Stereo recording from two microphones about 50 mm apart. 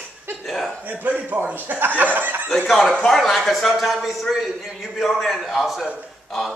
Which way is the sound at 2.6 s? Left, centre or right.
Centre.